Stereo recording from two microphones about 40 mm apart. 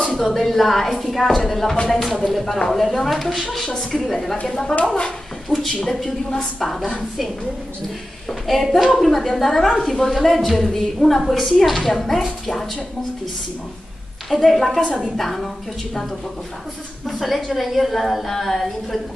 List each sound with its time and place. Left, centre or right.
0.1 s a woman's voice: centre
8.3 s a woman's voice: centre
14.3 s a woman's voice: centre